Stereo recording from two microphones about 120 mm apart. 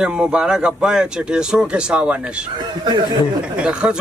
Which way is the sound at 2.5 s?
35° right (ahead or behind).